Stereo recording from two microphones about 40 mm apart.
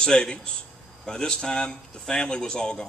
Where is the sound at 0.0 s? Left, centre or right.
Left.